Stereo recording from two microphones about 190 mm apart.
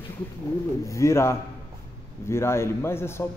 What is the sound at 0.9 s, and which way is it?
A man's voice, 15° left (ahead or behind).